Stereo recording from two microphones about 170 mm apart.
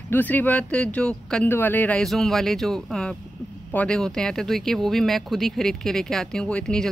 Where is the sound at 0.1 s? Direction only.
10° left (ahead or behind).